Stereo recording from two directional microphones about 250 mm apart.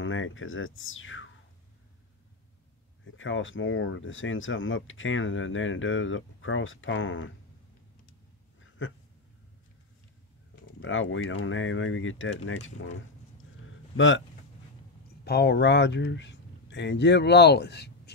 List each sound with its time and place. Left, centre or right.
0.0 s speech: left
3.1 s speech: left
8.5 s a sound: left
10.8 s speech: left
15.2 s speech: left